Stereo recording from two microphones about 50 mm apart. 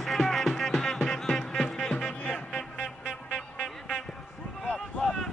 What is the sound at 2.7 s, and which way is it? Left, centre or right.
Music, centre.